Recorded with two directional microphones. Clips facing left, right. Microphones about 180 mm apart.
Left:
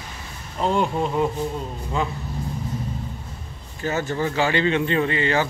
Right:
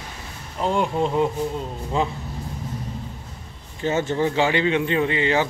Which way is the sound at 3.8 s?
25° right (ahead or behind).